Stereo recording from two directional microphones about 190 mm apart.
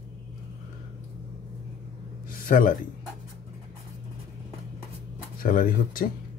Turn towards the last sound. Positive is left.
turn(degrees=50)  # may be behind; listen again after turning